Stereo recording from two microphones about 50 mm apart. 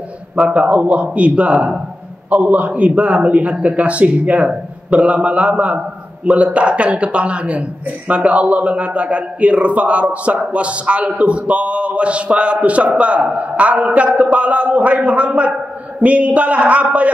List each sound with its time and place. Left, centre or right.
0.4 s a man's voice: right